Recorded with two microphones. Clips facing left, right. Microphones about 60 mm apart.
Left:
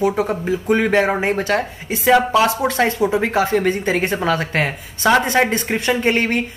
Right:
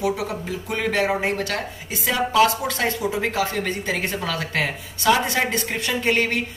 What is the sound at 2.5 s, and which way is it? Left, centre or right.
Speech, left.